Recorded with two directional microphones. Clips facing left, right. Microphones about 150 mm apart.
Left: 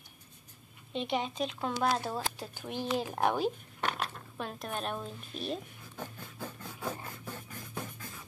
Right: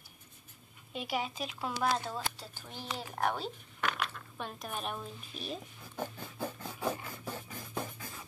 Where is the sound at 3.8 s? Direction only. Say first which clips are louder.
Left 1 dB; 30° left (ahead or behind).